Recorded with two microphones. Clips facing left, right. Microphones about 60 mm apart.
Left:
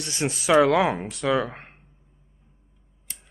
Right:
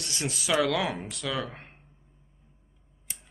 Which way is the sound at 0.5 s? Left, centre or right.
Left.